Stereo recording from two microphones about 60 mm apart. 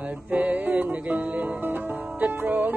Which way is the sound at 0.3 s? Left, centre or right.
Right.